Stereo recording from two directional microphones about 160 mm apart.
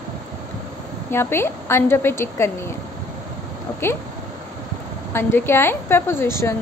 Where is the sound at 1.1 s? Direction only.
15° left (ahead or behind).